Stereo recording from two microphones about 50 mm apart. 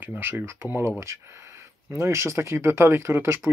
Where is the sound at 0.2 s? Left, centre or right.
Right.